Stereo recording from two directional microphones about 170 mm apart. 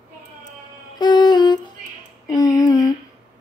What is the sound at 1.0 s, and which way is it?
Music, 25° left (ahead or behind).